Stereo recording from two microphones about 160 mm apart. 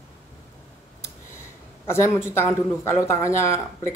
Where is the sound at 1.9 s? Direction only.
15° left (ahead or behind).